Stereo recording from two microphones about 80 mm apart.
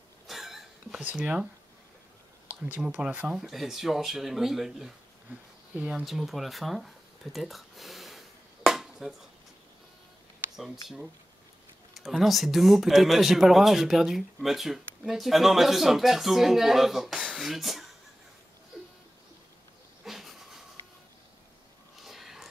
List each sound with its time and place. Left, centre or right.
0.3 s cough: centre
0.9 s speech: centre
2.6 s speech: right
3.3 s speech: centre
5.3 s speech: centre
6.0 s speech: centre
8.6 s a sound: centre
10.5 s speech: centre
20.1 s dog: centre
22.0 s a sound: centre